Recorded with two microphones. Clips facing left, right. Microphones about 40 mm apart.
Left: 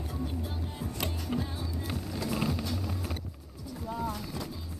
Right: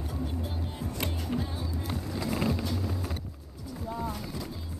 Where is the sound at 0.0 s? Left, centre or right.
Centre.